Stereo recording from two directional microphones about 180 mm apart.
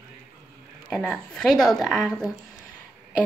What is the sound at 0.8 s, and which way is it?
A woman's voice, 5° left (ahead or behind).